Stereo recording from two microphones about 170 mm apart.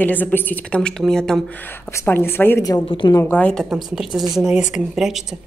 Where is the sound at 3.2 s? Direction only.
10° left (ahead or behind).